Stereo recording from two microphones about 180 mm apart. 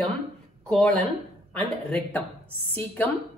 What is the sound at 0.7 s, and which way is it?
A woman's voice, 5° left (ahead or behind).